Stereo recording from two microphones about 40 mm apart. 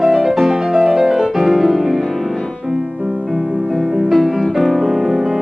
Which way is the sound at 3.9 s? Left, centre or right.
Centre.